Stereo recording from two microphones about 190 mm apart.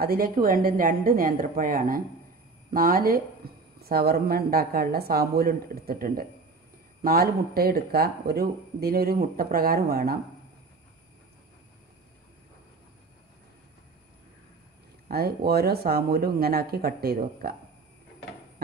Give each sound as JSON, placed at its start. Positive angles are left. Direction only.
{"t": 0.0, "sound": "speech", "side_deg": -50}
{"t": 3.4, "sound": "a sound", "side_deg": -55}
{"t": 3.8, "sound": "speech", "side_deg": -55}
{"t": 15.0, "sound": "speech", "side_deg": -55}